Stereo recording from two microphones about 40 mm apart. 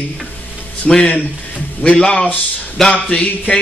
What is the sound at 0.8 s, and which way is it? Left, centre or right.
Speech, centre.